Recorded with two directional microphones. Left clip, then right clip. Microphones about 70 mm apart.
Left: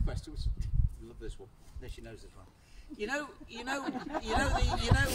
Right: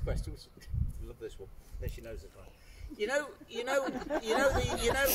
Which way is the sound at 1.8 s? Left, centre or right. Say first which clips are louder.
Right 4 dB; left.